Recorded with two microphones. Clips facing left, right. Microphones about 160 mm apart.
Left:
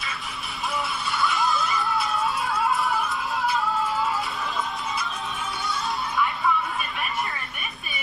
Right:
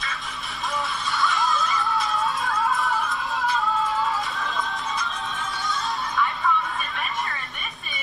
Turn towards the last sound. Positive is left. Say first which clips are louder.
# left 1 dB
turn(degrees=5)  # may be behind; listen again after turning